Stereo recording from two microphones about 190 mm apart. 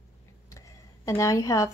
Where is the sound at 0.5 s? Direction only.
15° left (ahead or behind).